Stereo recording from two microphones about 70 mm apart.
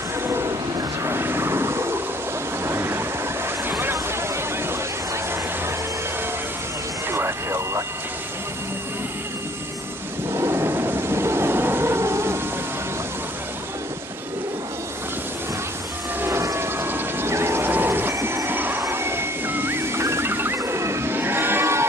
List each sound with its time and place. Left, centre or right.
0.3 s a sound: right
1.0 s vehicle: right
2.6 s waves: right
7.1 s music: right
10.3 s a sound: right
16.2 s vehicle: right
18.2 s train: right
18.8 s music: right